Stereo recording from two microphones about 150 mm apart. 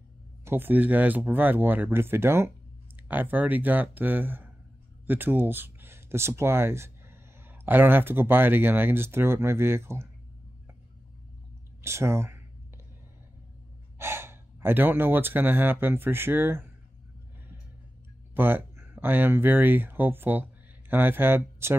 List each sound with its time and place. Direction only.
0.5 s speech: 15° right (ahead or behind)
11.8 s speech: 20° right (ahead or behind)
13.9 s speech: 15° right (ahead or behind)
18.3 s speech: 15° right (ahead or behind)